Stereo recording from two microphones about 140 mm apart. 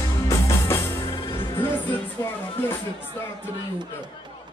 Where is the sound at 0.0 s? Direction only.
20° left (ahead or behind).